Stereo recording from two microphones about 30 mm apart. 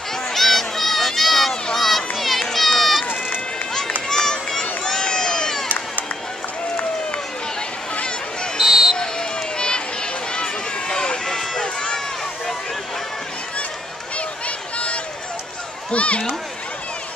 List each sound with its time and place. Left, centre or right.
0.3 s a sound: centre
1.8 s run: centre
4.1 s run: centre
4.8 s crowd: left
8.5 s run: centre
8.9 s run: left
11.6 s run: left
15.9 s a sound: left